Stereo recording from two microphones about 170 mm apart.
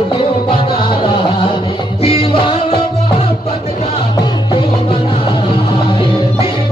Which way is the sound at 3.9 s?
25° left (ahead or behind).